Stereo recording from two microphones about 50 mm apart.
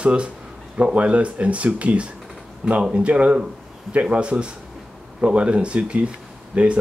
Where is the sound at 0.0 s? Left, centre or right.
Right.